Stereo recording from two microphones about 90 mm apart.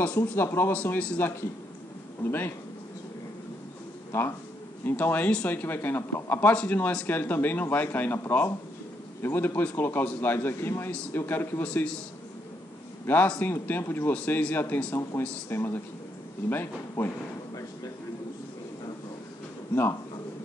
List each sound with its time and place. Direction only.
0.0 s speech: 25° left (ahead or behind)
4.1 s speech: 20° left (ahead or behind)
11.6 s speech: 10° left (ahead or behind)
13.0 s a man's voice: 20° left (ahead or behind)